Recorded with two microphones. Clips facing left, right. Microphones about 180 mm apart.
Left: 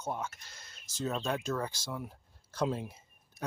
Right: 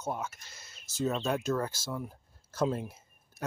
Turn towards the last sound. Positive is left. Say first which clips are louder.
# right 1 dB
turn(degrees=-5)  # may be behind; listen again after turning